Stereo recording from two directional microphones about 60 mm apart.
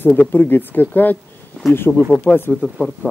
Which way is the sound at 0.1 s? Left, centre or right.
Left.